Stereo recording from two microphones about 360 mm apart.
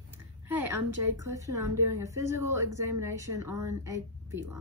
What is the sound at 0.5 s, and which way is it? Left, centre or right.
A woman's voice, centre.